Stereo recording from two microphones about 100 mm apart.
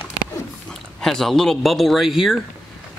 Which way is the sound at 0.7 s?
5° left (ahead or behind).